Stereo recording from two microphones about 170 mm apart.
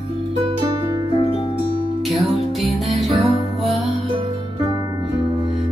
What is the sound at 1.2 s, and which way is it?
Music, 35° left (ahead or behind).